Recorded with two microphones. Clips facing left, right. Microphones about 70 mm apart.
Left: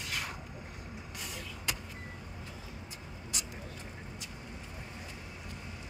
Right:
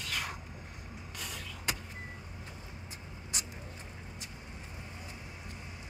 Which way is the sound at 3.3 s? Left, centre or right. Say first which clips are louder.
Right 1 dB; right.